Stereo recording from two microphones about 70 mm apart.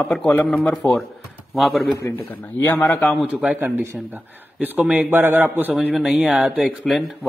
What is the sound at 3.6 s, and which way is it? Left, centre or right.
Speech, right.